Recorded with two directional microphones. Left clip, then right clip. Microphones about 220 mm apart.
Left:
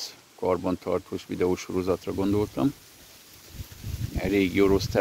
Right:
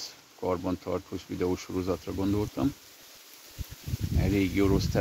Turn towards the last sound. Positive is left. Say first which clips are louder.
# left 5 dB
turn(degrees=40)  # may be behind; listen again after turning